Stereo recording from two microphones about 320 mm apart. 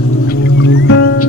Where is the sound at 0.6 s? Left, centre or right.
Left.